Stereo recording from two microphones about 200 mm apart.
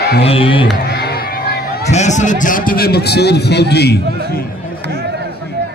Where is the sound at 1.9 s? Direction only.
35° left (ahead or behind); by 4.0 s 55° left (ahead or behind).